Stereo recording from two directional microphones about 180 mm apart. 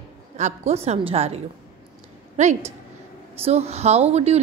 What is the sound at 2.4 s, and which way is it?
Speech, 40° right (ahead or behind).